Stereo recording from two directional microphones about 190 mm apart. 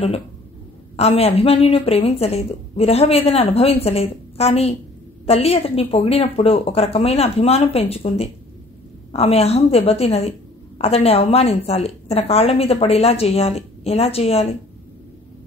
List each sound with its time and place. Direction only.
0.9 s a woman's voice: 30° left (ahead or behind)